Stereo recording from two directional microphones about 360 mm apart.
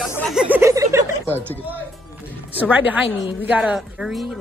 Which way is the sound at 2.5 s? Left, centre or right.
Centre.